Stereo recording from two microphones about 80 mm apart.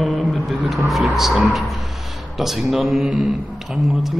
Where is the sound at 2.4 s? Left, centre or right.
Centre.